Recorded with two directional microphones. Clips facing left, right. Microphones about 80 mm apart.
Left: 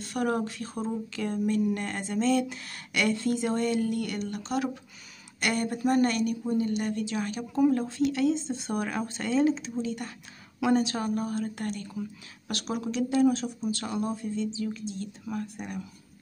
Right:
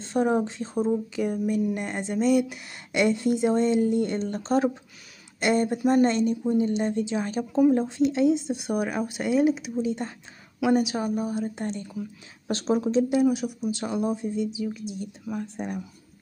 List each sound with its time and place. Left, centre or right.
0.0 s speech: right
5.4 s speech: right
13.1 s speech: centre
15.3 s speech: right